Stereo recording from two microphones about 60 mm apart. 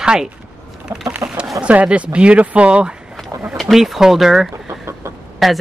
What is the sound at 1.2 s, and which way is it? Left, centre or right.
Chicken, right.